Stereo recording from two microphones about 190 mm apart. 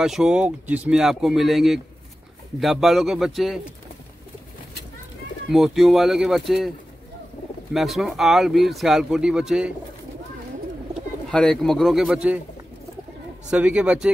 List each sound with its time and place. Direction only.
0.0 s speech: centre (ahead or behind)
5.5 s speech: centre (ahead or behind)
7.7 s speech: centre (ahead or behind)
11.2 s speech: centre (ahead or behind)
13.5 s speech: 5° right (ahead or behind)